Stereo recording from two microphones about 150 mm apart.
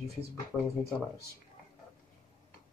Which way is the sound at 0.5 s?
Centre (ahead or behind).